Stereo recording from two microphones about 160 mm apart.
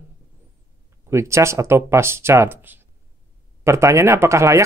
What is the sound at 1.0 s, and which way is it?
Speech, 15° right (ahead or behind).